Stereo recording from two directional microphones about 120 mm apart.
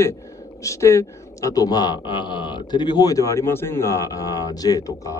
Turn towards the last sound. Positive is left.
turn(degrees=30)  # may be behind; listen again after turning